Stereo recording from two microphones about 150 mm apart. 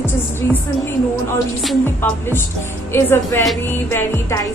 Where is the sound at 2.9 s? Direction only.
15° left (ahead or behind).